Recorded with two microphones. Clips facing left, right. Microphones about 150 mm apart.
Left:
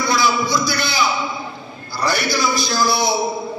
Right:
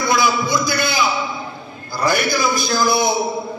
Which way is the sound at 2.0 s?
50° right (ahead or behind).